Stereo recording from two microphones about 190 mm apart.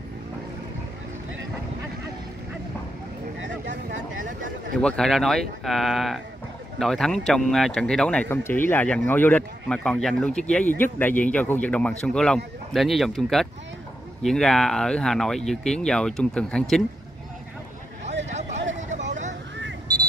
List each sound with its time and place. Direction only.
4.2 s speech: 45° right (ahead or behind)
4.7 s speech: 5° left (ahead or behind)
18.9 s vehicle: 40° right (ahead or behind)